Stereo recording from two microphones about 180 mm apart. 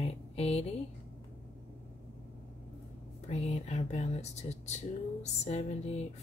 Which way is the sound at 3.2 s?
35° left (ahead or behind).